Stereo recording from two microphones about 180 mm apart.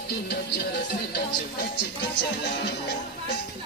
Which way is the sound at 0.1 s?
65° left (ahead or behind).